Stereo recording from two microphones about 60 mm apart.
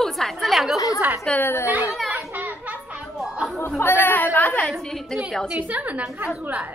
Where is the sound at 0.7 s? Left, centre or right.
Left.